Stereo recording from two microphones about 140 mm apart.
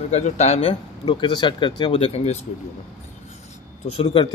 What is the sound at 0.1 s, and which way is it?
Speech, 50° left (ahead or behind).